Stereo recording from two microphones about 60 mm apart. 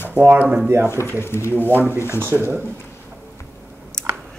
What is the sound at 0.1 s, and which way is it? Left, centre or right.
Speech, right.